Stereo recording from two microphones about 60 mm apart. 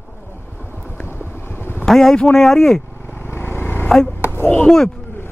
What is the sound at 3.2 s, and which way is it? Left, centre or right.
Vehicle, left.